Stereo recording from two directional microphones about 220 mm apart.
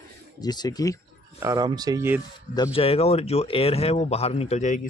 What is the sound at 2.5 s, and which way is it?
Speech, 20° left (ahead or behind).